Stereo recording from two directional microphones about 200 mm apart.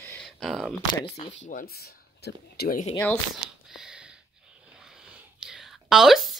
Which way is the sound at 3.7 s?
5° right (ahead or behind).